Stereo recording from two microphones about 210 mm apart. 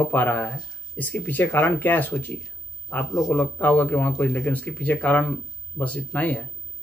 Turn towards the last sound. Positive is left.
turn(degrees=5)  # may be behind; listen again after turning